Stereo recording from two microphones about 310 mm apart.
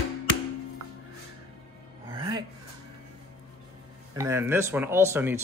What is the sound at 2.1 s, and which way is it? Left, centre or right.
Gasp, centre.